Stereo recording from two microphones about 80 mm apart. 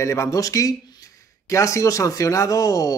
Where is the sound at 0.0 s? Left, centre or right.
Left.